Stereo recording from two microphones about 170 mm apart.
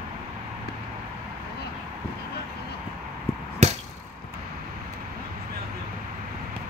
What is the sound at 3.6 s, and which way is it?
Chop, 40° right (ahead or behind).